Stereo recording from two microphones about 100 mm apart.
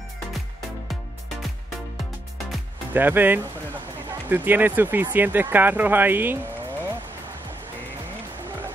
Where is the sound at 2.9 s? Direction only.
20° right (ahead or behind).